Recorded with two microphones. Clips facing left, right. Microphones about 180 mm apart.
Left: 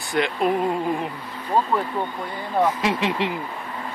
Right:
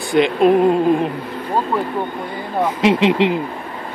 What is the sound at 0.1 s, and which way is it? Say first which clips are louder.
Speech: right 8 dB; 20° right (ahead or behind).